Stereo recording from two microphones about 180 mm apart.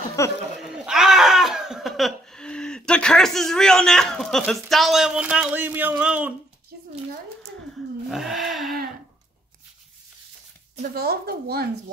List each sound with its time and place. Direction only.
0.2 s speech: 15° left (ahead or behind)
0.6 s speech: 5° right (ahead or behind)
8.1 s wild animals: centre (ahead or behind)
10.8 s a woman's voice: 60° right (ahead or behind)